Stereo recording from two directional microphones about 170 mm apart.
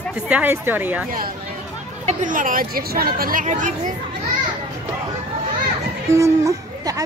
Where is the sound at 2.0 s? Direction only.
50° right (ahead or behind).